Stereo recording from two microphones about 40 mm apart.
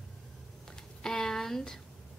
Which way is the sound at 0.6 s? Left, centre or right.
Centre.